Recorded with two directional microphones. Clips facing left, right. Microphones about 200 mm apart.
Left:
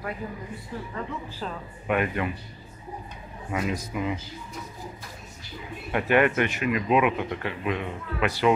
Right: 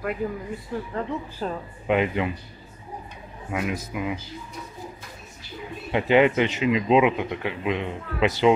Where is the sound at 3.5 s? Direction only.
10° right (ahead or behind).